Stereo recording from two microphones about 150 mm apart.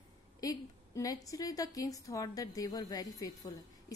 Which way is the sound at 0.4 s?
25° left (ahead or behind).